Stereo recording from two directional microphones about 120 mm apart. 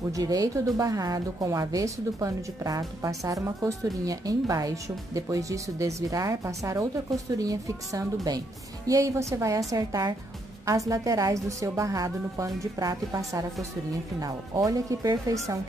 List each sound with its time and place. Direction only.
0.1 s a woman's voice: 30° right (ahead or behind)